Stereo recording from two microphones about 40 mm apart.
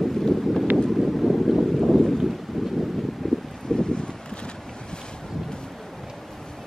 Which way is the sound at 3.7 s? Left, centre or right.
Left.